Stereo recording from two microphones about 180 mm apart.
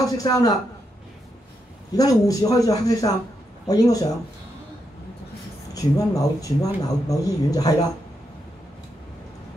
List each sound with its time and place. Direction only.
0.0 s speech: 20° left (ahead or behind)
2.0 s speech: 20° left (ahead or behind)
5.8 s speech: 20° left (ahead or behind)